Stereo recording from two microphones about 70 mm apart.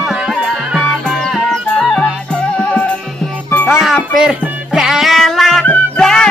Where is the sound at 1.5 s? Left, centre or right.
Centre.